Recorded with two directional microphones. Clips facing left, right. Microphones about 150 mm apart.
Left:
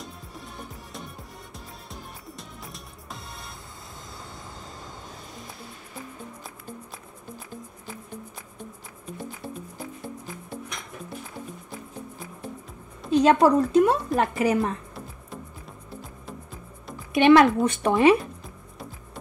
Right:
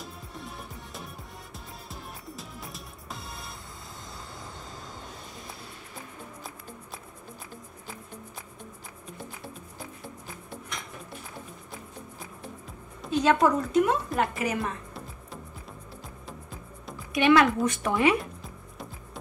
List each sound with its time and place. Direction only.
0.0 s music: centre (ahead or behind)
13.1 s a woman's voice: 35° left (ahead or behind)
17.1 s speech: 30° left (ahead or behind)